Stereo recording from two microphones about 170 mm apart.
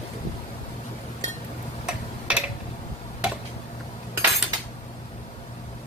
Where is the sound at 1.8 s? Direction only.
5° right (ahead or behind).